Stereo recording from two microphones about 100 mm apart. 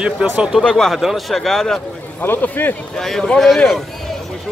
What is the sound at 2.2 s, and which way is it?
Speech, 20° left (ahead or behind).